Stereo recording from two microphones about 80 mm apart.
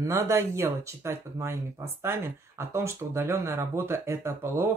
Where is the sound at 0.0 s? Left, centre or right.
Right.